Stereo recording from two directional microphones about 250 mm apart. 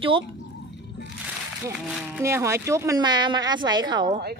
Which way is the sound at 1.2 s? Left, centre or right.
Centre.